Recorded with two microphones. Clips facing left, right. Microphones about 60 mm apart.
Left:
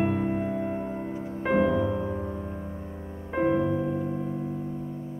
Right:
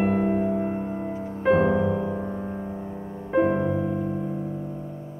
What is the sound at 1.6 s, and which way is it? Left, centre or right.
Music, centre.